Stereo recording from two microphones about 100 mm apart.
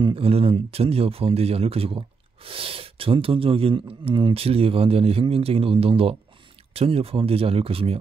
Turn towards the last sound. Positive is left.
turn(degrees=-70)  # may be behind; listen again after turning